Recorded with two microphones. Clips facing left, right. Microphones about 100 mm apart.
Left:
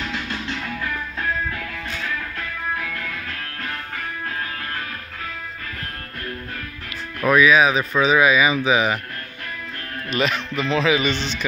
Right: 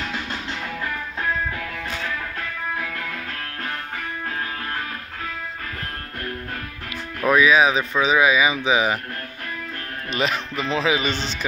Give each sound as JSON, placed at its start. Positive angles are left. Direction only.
{"t": 7.2, "sound": "speech", "side_deg": -25}
{"t": 10.1, "sound": "a man's voice", "side_deg": -30}